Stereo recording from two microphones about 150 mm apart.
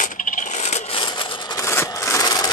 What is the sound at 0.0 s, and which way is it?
Scrape, 55° left (ahead or behind).